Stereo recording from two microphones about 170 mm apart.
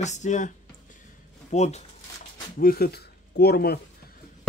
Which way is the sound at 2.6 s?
60° left (ahead or behind).